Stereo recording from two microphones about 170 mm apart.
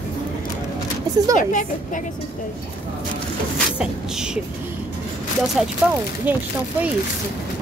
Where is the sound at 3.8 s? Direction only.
5° right (ahead or behind).